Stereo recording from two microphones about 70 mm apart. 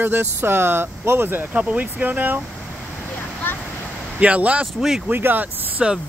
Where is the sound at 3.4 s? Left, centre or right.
Left.